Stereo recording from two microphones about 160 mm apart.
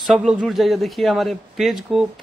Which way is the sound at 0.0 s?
Centre (ahead or behind).